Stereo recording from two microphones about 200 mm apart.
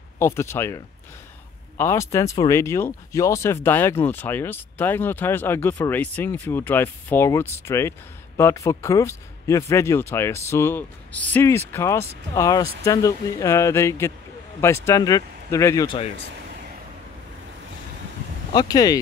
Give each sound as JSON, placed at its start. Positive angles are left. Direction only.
{"t": 0.2, "sound": "speech", "side_deg": 10}
{"t": 18.5, "sound": "speech", "side_deg": 20}